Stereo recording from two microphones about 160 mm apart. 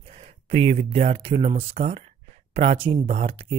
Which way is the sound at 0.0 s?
40° right (ahead or behind).